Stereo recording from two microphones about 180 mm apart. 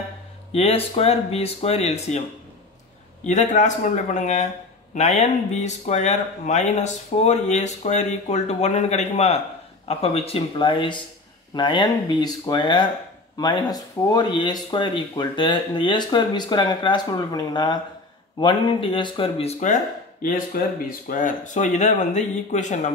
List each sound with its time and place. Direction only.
0.5 s speech: 35° left (ahead or behind)
3.3 s speech: 40° left (ahead or behind)